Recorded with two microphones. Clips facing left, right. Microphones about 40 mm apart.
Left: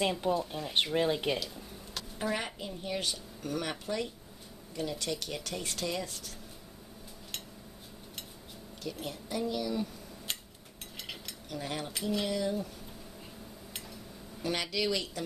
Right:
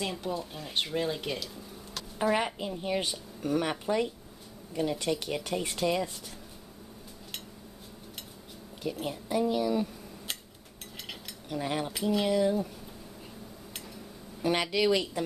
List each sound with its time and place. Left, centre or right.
0.0 s speech: centre
0.3 s speech: centre
0.9 s speech: centre
2.1 s a woman's voice: centre
9.0 s speech: centre
11.4 s a woman's voice: centre
11.9 s speech: centre
12.3 s a woman's voice: centre
14.4 s speech: centre